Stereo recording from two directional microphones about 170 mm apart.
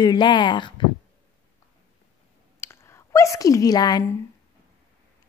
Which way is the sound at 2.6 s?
15° left (ahead or behind).